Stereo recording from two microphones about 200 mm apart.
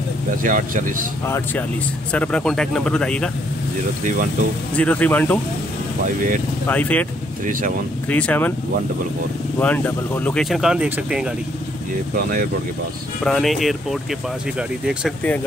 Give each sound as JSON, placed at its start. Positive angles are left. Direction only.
{"t": 0.4, "sound": "speech", "side_deg": -40}
{"t": 1.2, "sound": "speech", "side_deg": 10}
{"t": 4.7, "sound": "speech", "side_deg": 5}
{"t": 6.7, "sound": "speech", "side_deg": 10}
{"t": 8.1, "sound": "speech", "side_deg": 5}
{"t": 9.6, "sound": "speech", "side_deg": 10}
{"t": 13.2, "sound": "speech", "side_deg": 0}